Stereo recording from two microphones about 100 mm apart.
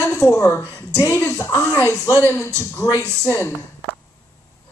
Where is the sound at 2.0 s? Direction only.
30° left (ahead or behind).